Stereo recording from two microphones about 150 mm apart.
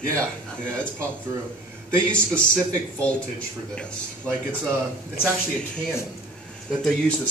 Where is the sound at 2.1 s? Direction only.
10° left (ahead or behind).